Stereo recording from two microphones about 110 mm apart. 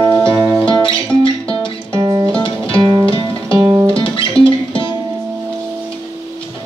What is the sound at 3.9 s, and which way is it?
Music, 55° left (ahead or behind).